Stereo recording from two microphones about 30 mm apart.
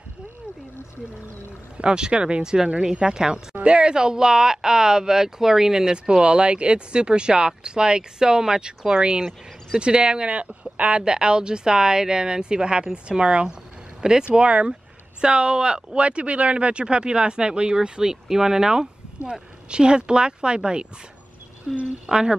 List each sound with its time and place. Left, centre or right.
1.8 s speech: right
2.4 s speech: right
6.2 s speech: right
14.4 s speech: right
14.7 s speech: right
18.3 s speech: centre
21.7 s speech: centre